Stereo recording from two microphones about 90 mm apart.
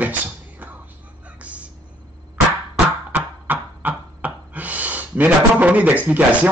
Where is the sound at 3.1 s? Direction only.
20° right (ahead or behind).